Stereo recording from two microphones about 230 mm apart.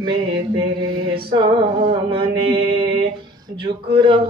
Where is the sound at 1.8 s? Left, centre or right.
Right.